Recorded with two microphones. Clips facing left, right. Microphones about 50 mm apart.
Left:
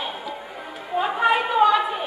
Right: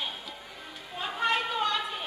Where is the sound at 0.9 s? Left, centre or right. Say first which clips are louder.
Left 9 dB; centre.